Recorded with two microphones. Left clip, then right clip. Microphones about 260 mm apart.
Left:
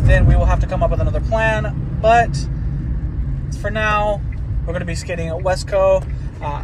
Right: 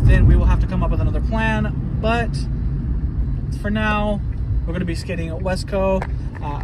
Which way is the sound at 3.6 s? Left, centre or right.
Centre.